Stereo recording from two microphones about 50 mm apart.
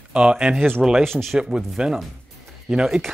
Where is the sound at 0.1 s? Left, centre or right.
Centre.